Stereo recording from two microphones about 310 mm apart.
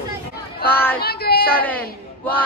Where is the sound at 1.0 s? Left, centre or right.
Left.